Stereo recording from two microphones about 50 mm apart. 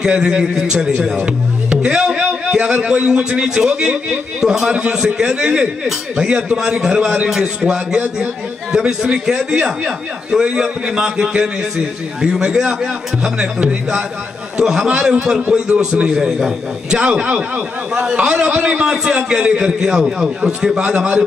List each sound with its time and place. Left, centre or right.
0.0 s a man's voice: centre
10.4 s a man's voice: centre
17.0 s a man's voice: right